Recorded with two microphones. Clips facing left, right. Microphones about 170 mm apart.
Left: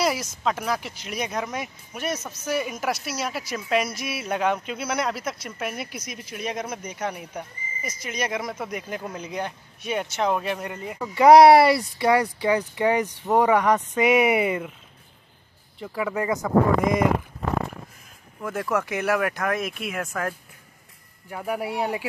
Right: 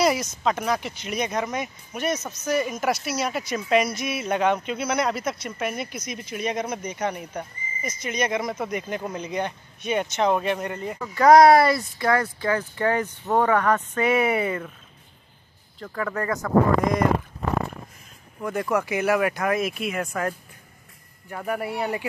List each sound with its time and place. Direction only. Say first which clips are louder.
0.0 s speech: right 3 dB; centre (ahead or behind)
15.9 s speech: left 2 dB; 10° left (ahead or behind)
18.4 s speech: right 1 dB; centre (ahead or behind)